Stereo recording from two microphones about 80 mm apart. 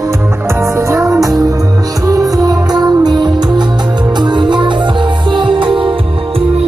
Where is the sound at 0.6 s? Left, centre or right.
Right.